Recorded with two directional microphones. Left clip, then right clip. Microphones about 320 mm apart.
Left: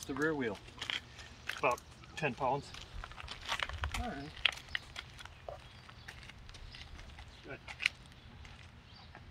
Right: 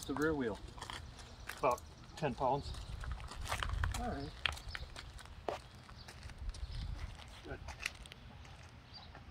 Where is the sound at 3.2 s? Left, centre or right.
Centre.